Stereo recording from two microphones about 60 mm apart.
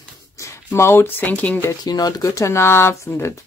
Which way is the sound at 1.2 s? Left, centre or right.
Left.